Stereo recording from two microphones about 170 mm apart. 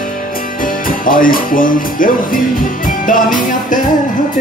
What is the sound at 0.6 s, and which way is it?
Music, 55° left (ahead or behind).